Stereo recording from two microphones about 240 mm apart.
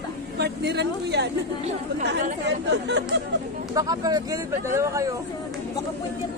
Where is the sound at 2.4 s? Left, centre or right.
Right.